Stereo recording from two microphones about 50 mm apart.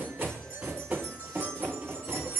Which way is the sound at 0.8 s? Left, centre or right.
Right.